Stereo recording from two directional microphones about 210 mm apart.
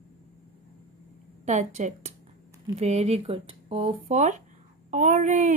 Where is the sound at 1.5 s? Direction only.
35° right (ahead or behind).